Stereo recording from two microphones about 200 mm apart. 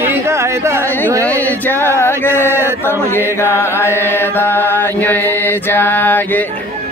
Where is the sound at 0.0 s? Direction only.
10° right (ahead or behind).